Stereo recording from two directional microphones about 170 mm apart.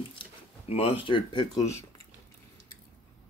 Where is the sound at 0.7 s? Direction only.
35° left (ahead or behind).